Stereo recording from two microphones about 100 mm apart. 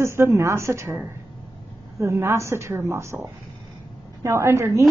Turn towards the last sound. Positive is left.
turn(degrees=-30)  # may be behind; listen again after turning